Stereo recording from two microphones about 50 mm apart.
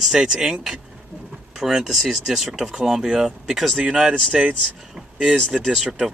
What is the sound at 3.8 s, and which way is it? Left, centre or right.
Speech, centre.